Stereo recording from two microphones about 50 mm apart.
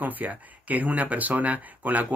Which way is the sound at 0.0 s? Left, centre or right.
Right.